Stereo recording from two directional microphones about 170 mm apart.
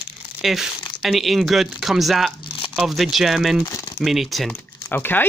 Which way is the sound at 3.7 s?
20° left (ahead or behind).